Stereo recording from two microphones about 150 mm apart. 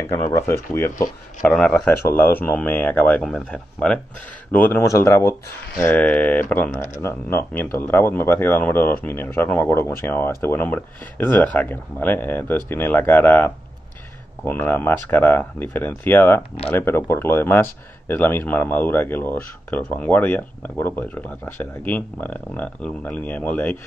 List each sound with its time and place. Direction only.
0.0 s speech: 20° left (ahead or behind)